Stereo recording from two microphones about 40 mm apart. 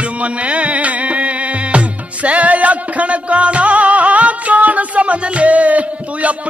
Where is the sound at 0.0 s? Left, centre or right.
Right.